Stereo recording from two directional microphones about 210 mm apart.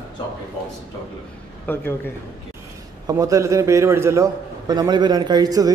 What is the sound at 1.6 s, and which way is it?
Speech, 10° left (ahead or behind).